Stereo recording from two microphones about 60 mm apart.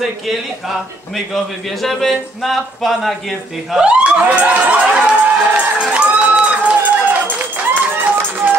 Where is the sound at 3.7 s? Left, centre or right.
Centre.